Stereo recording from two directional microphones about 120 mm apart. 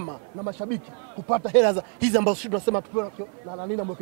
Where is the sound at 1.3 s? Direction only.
15° right (ahead or behind).